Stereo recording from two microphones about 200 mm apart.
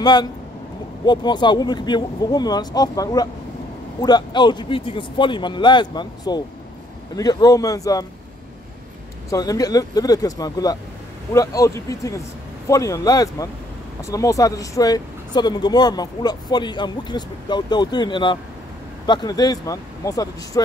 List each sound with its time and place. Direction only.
0.0 s speech: 20° left (ahead or behind)
9.3 s speech: 20° left (ahead or behind)